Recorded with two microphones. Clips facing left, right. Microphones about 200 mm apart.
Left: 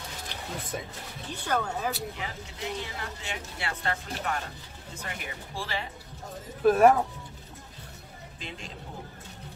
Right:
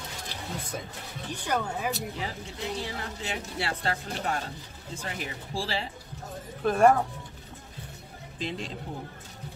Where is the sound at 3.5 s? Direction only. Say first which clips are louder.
Right 1 dB; 35° right (ahead or behind).